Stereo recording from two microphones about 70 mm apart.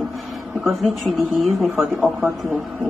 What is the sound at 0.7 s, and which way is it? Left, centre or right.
Speech, centre.